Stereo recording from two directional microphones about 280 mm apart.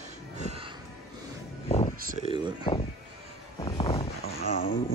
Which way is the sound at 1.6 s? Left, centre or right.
Left.